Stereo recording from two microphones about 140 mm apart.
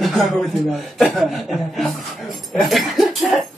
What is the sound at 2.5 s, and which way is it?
Dog, centre (ahead or behind).